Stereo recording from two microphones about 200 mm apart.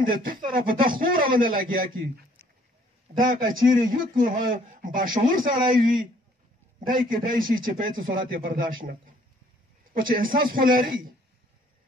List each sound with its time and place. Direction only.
0.0 s a man's voice: 45° right (ahead or behind)
3.2 s a man's voice: 40° right (ahead or behind)